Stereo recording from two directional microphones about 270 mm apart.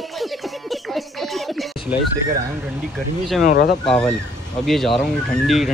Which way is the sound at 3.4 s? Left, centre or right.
Left.